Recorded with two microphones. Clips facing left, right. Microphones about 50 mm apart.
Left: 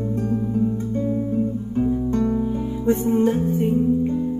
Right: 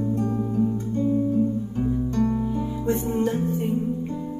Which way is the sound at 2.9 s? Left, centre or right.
Left.